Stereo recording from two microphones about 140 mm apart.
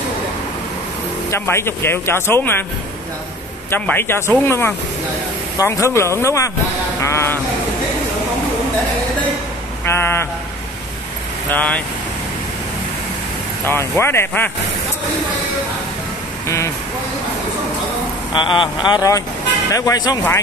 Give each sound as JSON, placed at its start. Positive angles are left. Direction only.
{"t": 1.3, "sound": "speech", "side_deg": 20}
{"t": 3.7, "sound": "speech", "side_deg": 15}
{"t": 9.8, "sound": "speech", "side_deg": 20}
{"t": 11.5, "sound": "speech", "side_deg": 10}
{"t": 13.7, "sound": "speech", "side_deg": 15}
{"t": 16.4, "sound": "speech", "side_deg": 20}
{"t": 18.3, "sound": "speech", "side_deg": 35}